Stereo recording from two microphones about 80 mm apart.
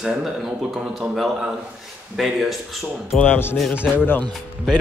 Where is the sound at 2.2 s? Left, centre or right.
Centre.